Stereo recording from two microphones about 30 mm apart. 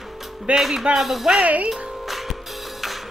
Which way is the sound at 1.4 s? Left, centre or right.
Right.